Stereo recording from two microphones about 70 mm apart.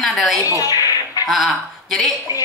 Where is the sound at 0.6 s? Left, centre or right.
Left.